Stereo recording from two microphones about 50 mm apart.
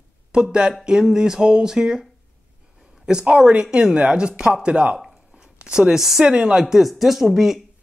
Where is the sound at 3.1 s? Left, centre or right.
Centre.